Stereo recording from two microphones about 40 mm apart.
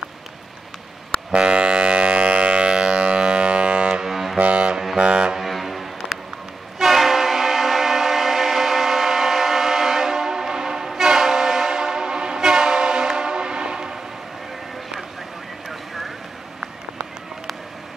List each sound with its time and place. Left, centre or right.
1.3 s civil defense siren: right
3.9 s ship: centre
4.4 s music: right
5.4 s foghorn: centre
6.1 s a sound: centre
6.8 s train: centre; by 13.9 s right
15.7 s vehicle: centre